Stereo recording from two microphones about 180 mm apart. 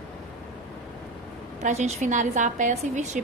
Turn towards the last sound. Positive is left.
turn(degrees=-40)  # may be behind; listen again after turning